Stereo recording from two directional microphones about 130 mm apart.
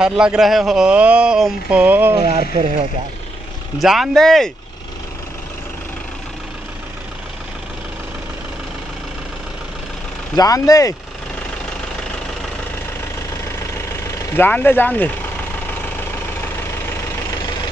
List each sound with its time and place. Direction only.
0.0 s a man's voice: 5° right (ahead or behind)
2.2 s speech: 50° right (ahead or behind)
3.8 s speech: centre (ahead or behind)
10.3 s speech: 30° left (ahead or behind)
14.3 s speech: 15° left (ahead or behind)